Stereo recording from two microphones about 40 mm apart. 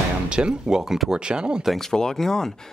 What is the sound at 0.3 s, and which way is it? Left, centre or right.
Speech, centre.